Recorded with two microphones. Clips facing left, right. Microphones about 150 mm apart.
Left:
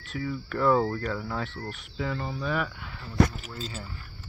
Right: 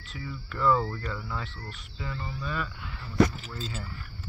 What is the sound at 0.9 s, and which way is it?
Speech, 65° left (ahead or behind).